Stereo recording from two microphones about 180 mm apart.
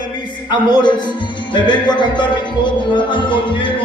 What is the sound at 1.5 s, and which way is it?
Music, 25° left (ahead or behind).